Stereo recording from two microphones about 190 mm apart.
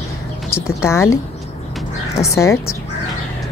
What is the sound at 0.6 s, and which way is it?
Speech, 15° left (ahead or behind).